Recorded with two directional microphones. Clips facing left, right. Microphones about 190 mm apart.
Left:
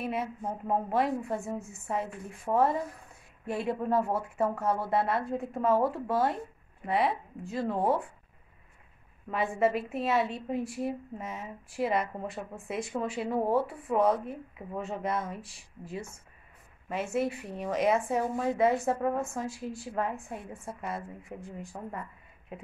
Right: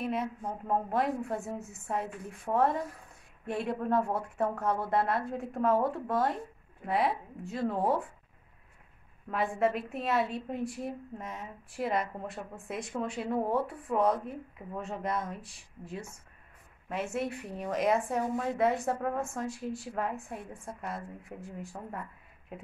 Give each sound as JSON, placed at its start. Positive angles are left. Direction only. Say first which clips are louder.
{"t": 0.0, "sound": "a woman's voice", "louder": "even", "side_deg": 5}
{"t": 9.3, "sound": "a woman's voice", "louder": "left 2 dB", "side_deg": 0}